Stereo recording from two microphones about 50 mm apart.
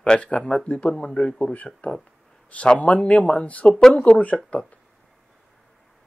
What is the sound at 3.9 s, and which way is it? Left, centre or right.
Speech, left.